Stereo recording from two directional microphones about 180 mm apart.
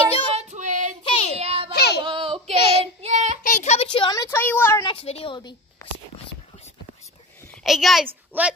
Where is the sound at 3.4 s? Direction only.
40° left (ahead or behind); by 4.8 s 10° left (ahead or behind).